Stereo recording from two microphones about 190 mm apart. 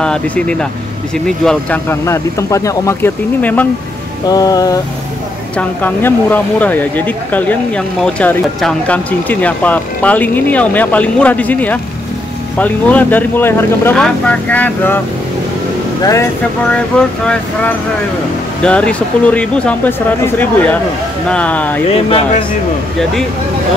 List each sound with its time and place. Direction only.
0.0 s speech: 5° left (ahead or behind)
4.3 s music: 20° left (ahead or behind)
5.6 s speech: 10° left (ahead or behind)
16.0 s speech: 15° left (ahead or behind)
18.6 s speech: 5° left (ahead or behind)
21.9 s music: 30° left (ahead or behind)